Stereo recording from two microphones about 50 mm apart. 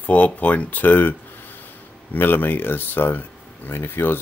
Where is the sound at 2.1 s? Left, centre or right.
Left.